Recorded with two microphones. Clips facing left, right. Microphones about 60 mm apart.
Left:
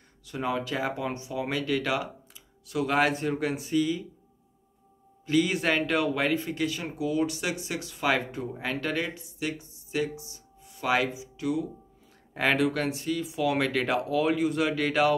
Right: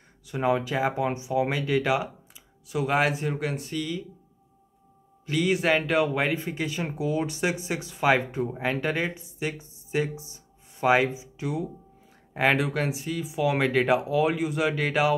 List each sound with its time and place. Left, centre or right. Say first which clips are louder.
0.3 s speech: right 5 dB; centre
5.2 s speech: right 1 dB; centre; by 11.6 s right
12.4 s speech: right 1 dB; centre